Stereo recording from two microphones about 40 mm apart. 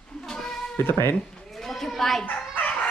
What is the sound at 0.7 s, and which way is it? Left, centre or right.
Speech, left.